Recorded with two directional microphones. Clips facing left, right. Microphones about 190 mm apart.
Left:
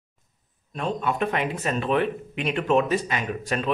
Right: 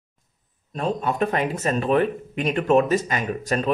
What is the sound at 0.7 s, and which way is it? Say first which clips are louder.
Speech: right 2 dB; 40° right (ahead or behind).